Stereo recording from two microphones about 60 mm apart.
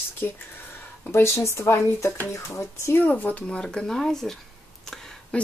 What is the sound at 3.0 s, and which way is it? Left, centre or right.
Speech, left.